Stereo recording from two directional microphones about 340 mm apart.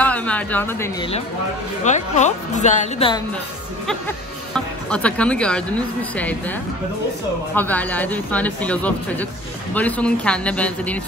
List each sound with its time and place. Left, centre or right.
0.0 s a woman's voice: centre
1.9 s speech: left
4.6 s speech: centre
7.5 s speech: centre